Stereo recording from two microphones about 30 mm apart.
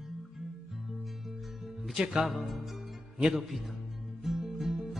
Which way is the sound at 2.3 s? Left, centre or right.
Centre.